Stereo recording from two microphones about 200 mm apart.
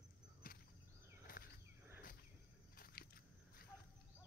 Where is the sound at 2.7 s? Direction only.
50° left (ahead or behind).